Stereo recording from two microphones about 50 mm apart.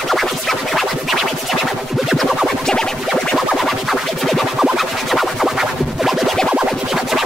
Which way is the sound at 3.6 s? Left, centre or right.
Centre.